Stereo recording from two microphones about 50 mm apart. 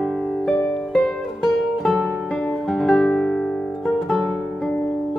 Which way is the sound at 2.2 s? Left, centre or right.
Left.